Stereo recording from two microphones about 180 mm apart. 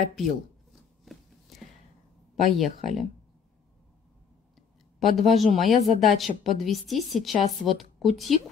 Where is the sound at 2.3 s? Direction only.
Centre (ahead or behind).